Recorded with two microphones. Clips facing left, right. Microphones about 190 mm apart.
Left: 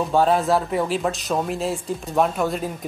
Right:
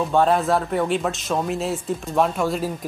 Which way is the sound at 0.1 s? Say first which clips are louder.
Left 1 dB; centre (ahead or behind).